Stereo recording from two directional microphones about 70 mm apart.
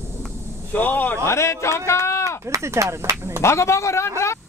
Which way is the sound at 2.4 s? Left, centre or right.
Right.